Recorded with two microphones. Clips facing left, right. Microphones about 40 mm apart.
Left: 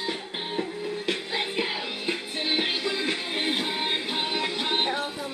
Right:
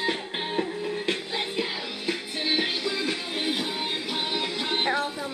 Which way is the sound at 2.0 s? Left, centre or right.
Left.